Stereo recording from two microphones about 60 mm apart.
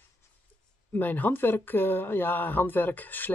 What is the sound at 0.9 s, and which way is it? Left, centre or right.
Speech, left.